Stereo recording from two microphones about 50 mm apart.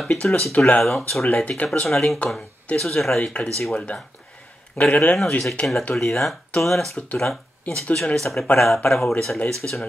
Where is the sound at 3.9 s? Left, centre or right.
Left.